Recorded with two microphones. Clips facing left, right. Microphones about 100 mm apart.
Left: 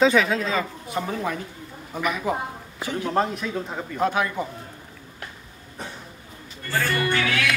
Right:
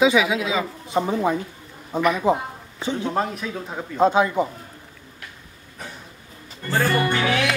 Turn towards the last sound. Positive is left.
turn(degrees=-25)  # may be behind; listen again after turning